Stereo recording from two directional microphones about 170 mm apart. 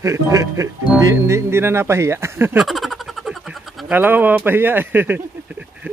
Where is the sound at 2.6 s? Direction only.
Centre (ahead or behind).